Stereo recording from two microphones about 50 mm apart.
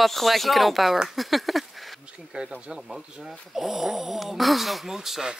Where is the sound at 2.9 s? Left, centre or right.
Centre.